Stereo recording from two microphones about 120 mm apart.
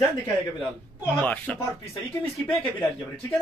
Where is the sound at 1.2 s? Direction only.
15° left (ahead or behind).